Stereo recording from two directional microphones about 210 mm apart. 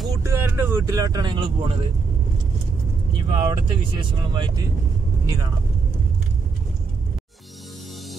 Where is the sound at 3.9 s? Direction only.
20° right (ahead or behind).